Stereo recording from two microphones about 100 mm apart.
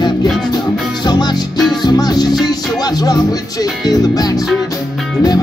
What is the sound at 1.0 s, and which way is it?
Music, 45° left (ahead or behind).